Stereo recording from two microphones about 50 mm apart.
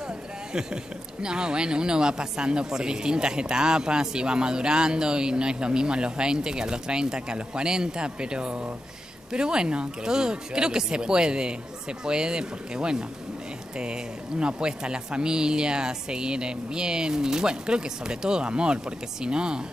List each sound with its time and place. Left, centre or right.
1.2 s speech: centre